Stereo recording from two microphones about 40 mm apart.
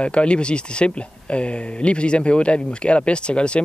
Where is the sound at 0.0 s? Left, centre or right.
Left.